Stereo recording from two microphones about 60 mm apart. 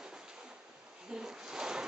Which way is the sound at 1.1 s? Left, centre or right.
Centre.